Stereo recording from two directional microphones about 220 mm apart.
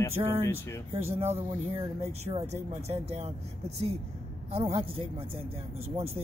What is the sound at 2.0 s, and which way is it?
Speech, 30° right (ahead or behind).